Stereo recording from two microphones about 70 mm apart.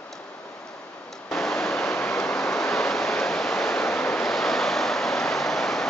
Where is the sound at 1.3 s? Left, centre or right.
Centre.